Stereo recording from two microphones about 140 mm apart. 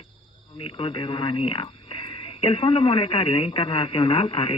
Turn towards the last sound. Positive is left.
turn(degrees=40)  # may be behind; listen again after turning